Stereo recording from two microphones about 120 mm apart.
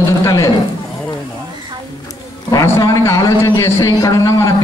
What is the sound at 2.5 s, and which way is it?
A man's voice, 30° left (ahead or behind).